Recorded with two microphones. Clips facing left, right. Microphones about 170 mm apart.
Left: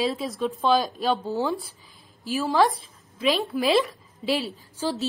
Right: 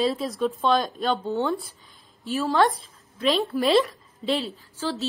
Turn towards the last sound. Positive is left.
turn(degrees=15)  # may be behind; listen again after turning